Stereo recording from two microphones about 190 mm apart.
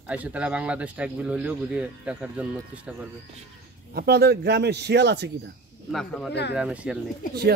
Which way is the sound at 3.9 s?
60° right (ahead or behind).